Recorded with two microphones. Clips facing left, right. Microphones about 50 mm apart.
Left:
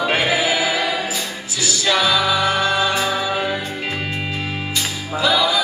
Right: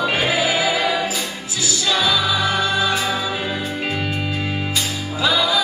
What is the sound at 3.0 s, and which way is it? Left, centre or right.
Music, left.